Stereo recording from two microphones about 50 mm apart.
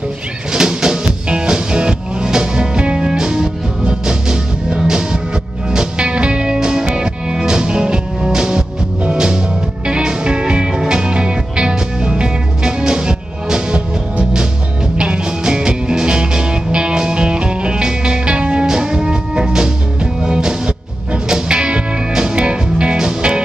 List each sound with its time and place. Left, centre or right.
0.5 s music: centre